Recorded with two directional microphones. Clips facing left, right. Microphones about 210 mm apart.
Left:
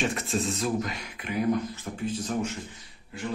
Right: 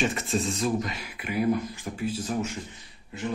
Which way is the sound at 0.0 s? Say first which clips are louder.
Right 1 dB; centre (ahead or behind).